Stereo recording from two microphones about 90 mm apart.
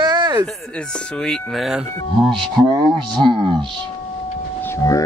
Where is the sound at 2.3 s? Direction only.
65° right (ahead or behind).